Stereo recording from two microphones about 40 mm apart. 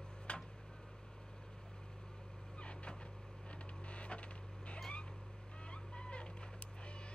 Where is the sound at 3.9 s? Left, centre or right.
Left.